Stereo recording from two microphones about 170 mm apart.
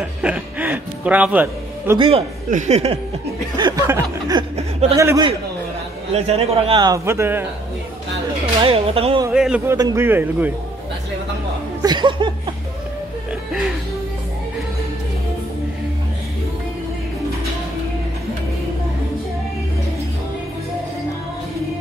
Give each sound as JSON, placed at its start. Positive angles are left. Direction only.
{"t": 0.2, "sound": "music", "side_deg": -10}
{"t": 2.0, "sound": "a man's voice", "side_deg": -35}
{"t": 3.5, "sound": "speech", "side_deg": -20}
{"t": 6.1, "sound": "speech", "side_deg": -40}
{"t": 8.6, "sound": "a man's voice", "side_deg": -35}
{"t": 9.3, "sound": "a man's voice", "side_deg": -5}
{"t": 9.7, "sound": "a man's voice", "side_deg": -20}
{"t": 11.8, "sound": "speech", "side_deg": -25}